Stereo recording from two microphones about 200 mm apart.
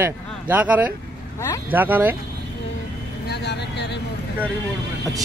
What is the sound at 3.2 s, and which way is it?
Vehicle, 55° left (ahead or behind).